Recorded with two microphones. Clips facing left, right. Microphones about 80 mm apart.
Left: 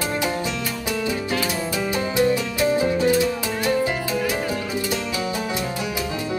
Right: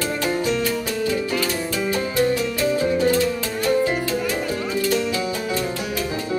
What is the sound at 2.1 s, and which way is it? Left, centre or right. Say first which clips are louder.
Music: left 1 dB; centre.